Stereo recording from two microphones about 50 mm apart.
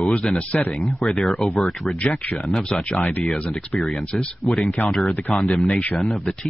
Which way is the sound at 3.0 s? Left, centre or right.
Left.